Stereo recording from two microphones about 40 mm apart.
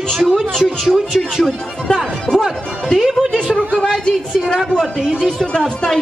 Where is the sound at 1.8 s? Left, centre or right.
Left.